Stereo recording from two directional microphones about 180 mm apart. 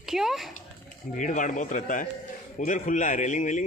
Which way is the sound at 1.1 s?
45° left (ahead or behind).